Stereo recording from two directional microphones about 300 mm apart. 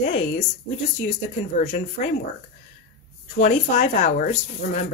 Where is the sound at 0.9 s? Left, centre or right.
Left.